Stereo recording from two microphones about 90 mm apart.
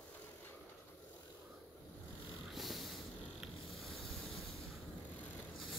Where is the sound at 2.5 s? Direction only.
Centre (ahead or behind).